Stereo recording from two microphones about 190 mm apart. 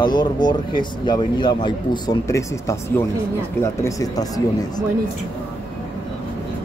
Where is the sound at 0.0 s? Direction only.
20° left (ahead or behind).